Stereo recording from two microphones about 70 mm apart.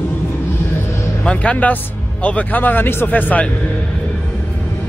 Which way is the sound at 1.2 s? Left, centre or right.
Centre.